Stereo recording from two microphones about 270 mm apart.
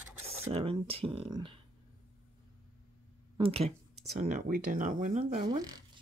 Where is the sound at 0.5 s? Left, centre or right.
Right.